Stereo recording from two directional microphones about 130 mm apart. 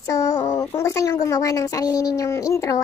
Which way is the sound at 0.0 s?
25° left (ahead or behind).